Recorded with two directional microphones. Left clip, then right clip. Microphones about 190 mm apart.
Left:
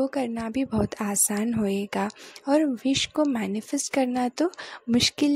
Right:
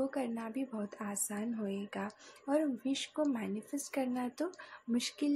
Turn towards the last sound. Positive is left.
turn(degrees=45)  # may be behind; listen again after turning